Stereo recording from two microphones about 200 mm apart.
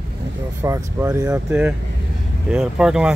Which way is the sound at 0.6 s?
15° right (ahead or behind).